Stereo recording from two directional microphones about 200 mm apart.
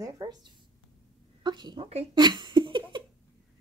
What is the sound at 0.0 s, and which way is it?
A woman's voice, 20° right (ahead or behind).